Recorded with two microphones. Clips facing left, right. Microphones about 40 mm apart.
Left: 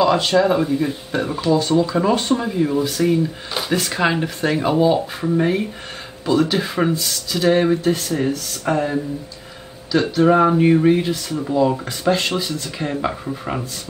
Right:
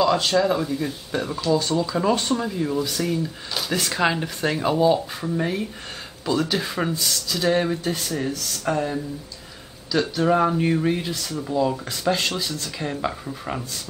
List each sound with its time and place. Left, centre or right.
0.0 s speech: centre
3.7 s speech: centre; by 5.7 s left
6.2 s speech: centre
10.1 s speech: centre